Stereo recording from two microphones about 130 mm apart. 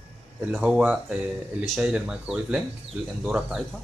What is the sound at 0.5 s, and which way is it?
Speech, 5° right (ahead or behind).